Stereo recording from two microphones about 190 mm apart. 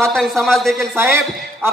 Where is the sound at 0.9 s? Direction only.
15° right (ahead or behind).